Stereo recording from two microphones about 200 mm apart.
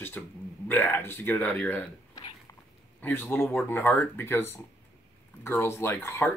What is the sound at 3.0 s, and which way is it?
Speech, 10° left (ahead or behind).